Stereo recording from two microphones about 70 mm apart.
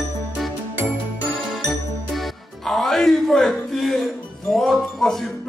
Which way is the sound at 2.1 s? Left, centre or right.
Centre.